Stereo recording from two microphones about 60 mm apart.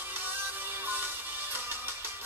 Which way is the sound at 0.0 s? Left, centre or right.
Right.